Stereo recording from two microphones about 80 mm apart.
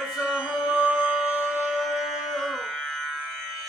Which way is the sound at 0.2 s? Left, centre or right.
Centre.